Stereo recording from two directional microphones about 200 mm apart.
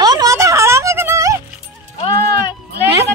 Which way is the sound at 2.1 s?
50° right (ahead or behind).